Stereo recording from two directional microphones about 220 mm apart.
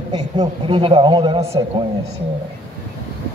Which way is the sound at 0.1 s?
20° right (ahead or behind).